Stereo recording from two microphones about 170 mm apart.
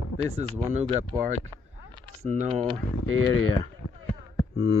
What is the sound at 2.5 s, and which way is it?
Speech, 25° right (ahead or behind).